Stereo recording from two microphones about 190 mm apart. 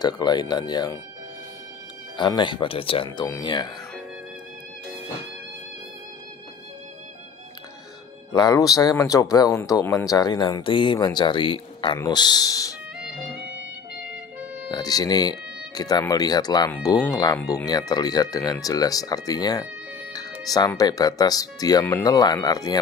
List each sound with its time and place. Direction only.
0.0 s speech: 20° left (ahead or behind)
2.1 s speech: 25° left (ahead or behind)
8.3 s speech: 20° left (ahead or behind)
14.7 s speech: 20° left (ahead or behind)